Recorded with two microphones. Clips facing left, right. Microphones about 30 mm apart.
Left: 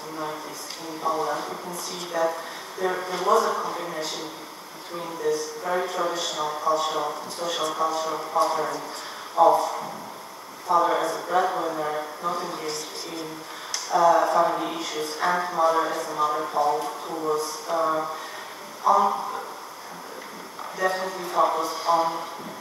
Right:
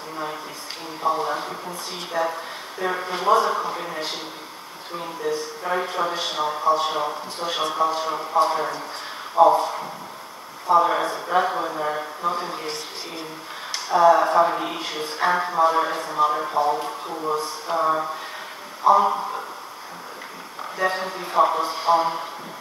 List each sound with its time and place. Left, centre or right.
1.0 s speech: right
2.1 s speech: right
3.1 s a man's voice: right
11.7 s mantra: centre
12.4 s speech: right
17.7 s a sound: centre
18.9 s speech: right
20.7 s speech: right